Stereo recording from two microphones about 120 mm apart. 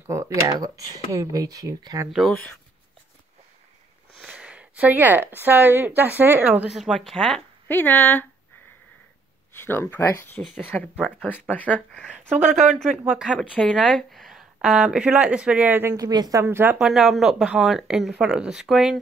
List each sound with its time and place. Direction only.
0.0 s speech: 25° right (ahead or behind)
2.0 s speech: centre (ahead or behind)
4.3 s a woman's voice: 10° right (ahead or behind)
6.7 s speech: centre (ahead or behind)
7.6 s speech: 15° left (ahead or behind)
9.6 s speech: 20° left (ahead or behind)
13.0 s a woman's voice: 10° right (ahead or behind)
16.0 s speech: 30° right (ahead or behind)
16.7 s speech: centre (ahead or behind)